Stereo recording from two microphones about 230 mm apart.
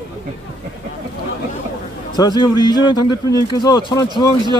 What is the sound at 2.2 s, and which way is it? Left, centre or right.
Speech, centre.